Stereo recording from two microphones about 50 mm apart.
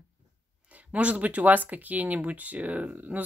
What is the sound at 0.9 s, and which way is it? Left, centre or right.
Speech, right.